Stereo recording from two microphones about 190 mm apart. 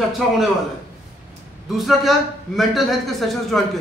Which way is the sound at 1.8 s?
Centre (ahead or behind).